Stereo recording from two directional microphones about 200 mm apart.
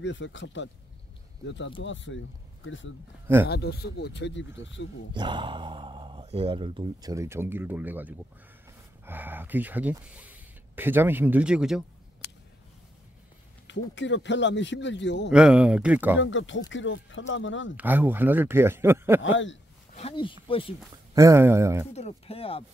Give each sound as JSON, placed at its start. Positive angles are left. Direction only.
{"t": 0.0, "sound": "a man's voice", "side_deg": 65}
{"t": 3.4, "sound": "a man's voice", "side_deg": 55}
{"t": 5.1, "sound": "speech", "side_deg": -25}
{"t": 13.7, "sound": "a man's voice", "side_deg": 65}
{"t": 15.3, "sound": "speech", "side_deg": -5}
{"t": 16.2, "sound": "speech", "side_deg": 70}
{"t": 17.7, "sound": "speech", "side_deg": -10}
{"t": 19.2, "sound": "speech", "side_deg": 70}
{"t": 19.9, "sound": "speech", "side_deg": 30}
{"t": 21.1, "sound": "speech", "side_deg": -15}
{"t": 21.9, "sound": "speech", "side_deg": 30}